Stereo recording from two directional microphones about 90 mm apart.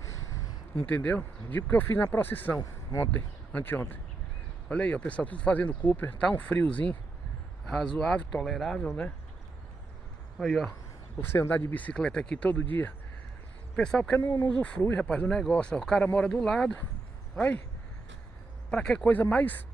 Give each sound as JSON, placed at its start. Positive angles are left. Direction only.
{"t": 0.0, "sound": "a sound", "side_deg": 35}
{"t": 0.7, "sound": "speech", "side_deg": 20}
{"t": 2.6, "sound": "speech", "side_deg": 40}
{"t": 3.1, "sound": "speech", "side_deg": 20}
{"t": 8.8, "sound": "speech", "side_deg": 15}
{"t": 10.3, "sound": "speech", "side_deg": 0}
{"t": 11.1, "sound": "speech", "side_deg": 25}
{"t": 13.7, "sound": "speech", "side_deg": 10}
{"t": 14.2, "sound": "speech", "side_deg": 30}
{"t": 14.5, "sound": "speech", "side_deg": 10}
{"t": 18.7, "sound": "speech", "side_deg": 10}